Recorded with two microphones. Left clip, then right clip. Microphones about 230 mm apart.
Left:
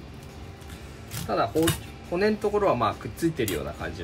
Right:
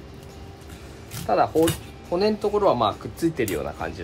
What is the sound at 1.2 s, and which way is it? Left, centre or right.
Speech, centre.